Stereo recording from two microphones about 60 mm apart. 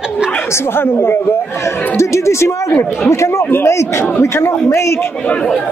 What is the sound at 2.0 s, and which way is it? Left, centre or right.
Speech, left.